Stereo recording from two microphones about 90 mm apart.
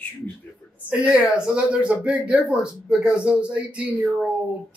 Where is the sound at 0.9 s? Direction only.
10° right (ahead or behind).